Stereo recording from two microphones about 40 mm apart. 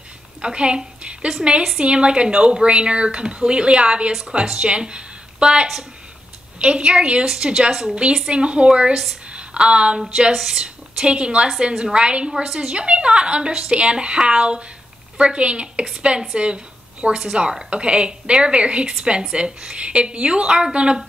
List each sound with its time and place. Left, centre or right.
0.4 s a woman's voice: right
10.3 s a woman's voice: centre
10.6 s a woman's voice: right
17.6 s a woman's voice: right